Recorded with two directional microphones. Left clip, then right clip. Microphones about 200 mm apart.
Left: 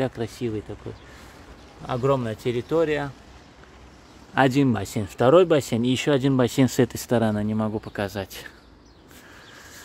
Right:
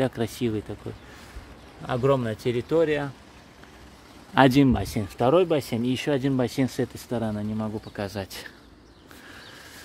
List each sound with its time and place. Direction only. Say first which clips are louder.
0.1 s speech: right 1 dB; 10° right (ahead or behind)
1.9 s speech: even; 5° right (ahead or behind)
4.4 s speech: right 1 dB; 10° right (ahead or behind)
5.1 s speech: left 4 dB; 15° left (ahead or behind)
7.9 s speech: left 3 dB; 10° left (ahead or behind)